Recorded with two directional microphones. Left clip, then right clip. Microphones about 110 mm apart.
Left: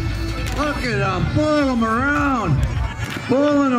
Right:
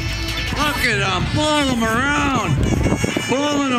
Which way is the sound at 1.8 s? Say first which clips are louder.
Right 1 dB; 50° right (ahead or behind).